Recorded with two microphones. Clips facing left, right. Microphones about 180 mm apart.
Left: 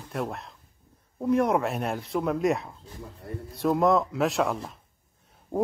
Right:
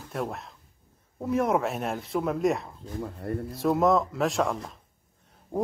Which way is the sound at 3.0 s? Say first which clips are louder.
Right 8 dB; 60° right (ahead or behind).